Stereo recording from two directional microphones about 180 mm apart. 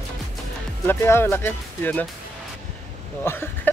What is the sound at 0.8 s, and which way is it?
Speech, 15° left (ahead or behind).